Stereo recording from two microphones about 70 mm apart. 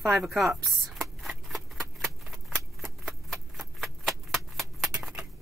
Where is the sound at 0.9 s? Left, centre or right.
Centre.